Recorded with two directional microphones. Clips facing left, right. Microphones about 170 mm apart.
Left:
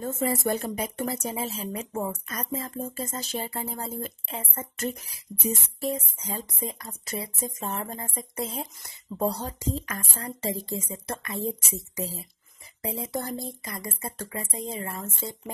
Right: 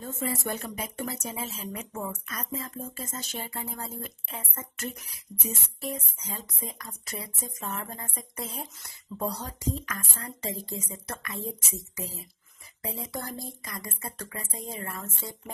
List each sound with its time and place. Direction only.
0.0 s a woman's voice: 45° left (ahead or behind); by 15.5 s 25° left (ahead or behind)